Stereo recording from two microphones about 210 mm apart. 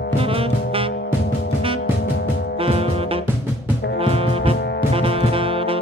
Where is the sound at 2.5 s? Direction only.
25° right (ahead or behind).